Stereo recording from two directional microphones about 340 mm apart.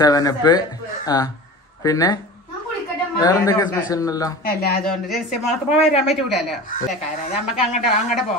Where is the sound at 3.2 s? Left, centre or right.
Centre.